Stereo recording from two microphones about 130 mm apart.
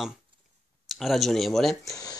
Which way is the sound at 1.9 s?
30° left (ahead or behind).